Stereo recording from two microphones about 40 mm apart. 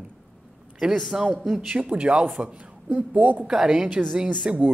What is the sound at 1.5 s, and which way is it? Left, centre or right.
A man's voice, right.